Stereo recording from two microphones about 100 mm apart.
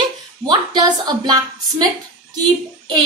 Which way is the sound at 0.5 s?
45° right (ahead or behind).